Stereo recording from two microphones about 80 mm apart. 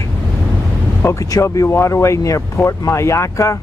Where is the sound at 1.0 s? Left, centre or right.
Left.